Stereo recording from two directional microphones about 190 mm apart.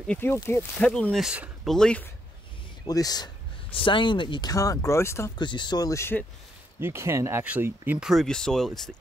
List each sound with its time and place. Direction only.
0.0 s speech: 10° left (ahead or behind)
2.9 s speech: 20° left (ahead or behind)
6.8 s speech: 15° right (ahead or behind); by 8.9 s centre (ahead or behind)